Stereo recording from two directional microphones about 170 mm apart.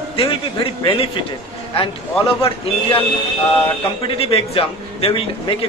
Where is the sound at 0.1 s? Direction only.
30° left (ahead or behind).